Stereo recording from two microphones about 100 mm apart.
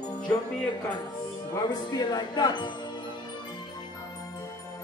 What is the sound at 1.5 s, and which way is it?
Speech, 45° left (ahead or behind).